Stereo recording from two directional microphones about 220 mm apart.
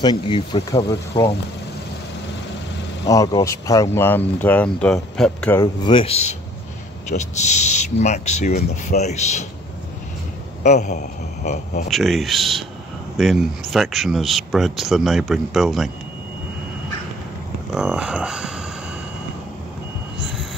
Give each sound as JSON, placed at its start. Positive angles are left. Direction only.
{"t": 0.0, "sound": "speech", "side_deg": 20}
{"t": 3.1, "sound": "speech", "side_deg": 15}
{"t": 8.5, "sound": "speech", "side_deg": 45}
{"t": 8.9, "sound": "speech", "side_deg": 30}
{"t": 10.6, "sound": "a man's voice", "side_deg": 35}
{"t": 11.9, "sound": "speech", "side_deg": 0}
{"t": 17.7, "sound": "speech", "side_deg": -5}